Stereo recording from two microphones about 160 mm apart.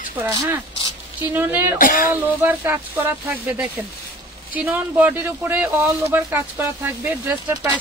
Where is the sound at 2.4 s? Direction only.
10° right (ahead or behind).